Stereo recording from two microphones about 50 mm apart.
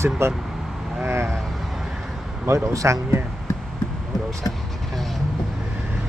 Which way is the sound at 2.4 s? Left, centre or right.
Right.